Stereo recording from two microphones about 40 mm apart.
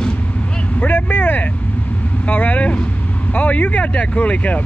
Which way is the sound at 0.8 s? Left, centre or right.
Left.